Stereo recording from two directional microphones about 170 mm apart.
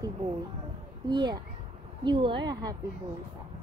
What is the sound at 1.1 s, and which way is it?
A woman's voice, 25° right (ahead or behind).